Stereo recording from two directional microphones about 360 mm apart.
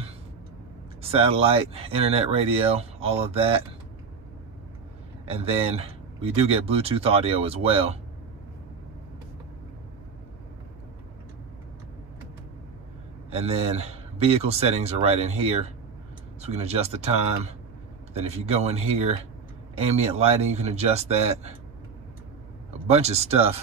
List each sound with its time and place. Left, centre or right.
1.0 s speech: centre
5.2 s speech: centre
13.3 s speech: centre
22.7 s speech: centre